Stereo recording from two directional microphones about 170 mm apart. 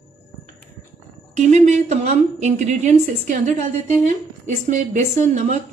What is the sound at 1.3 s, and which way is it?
A woman's voice, 45° right (ahead or behind).